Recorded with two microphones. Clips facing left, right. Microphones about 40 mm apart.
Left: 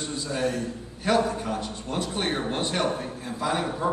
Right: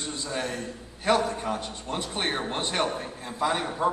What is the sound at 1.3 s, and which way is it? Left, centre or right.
A man's voice, right.